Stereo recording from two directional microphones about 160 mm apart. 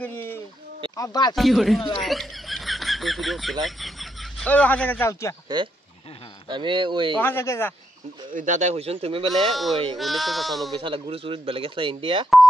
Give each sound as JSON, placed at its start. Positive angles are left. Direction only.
{"t": 0.0, "sound": "a sound", "side_deg": 10}
{"t": 0.9, "sound": "speech", "side_deg": 25}
{"t": 1.3, "sound": "speech", "side_deg": 0}
{"t": 6.5, "sound": "speech", "side_deg": -30}
{"t": 7.2, "sound": "speech", "side_deg": 15}
{"t": 8.3, "sound": "speech", "side_deg": -50}
{"t": 9.5, "sound": "speech", "side_deg": 0}
{"t": 10.8, "sound": "speech", "side_deg": -35}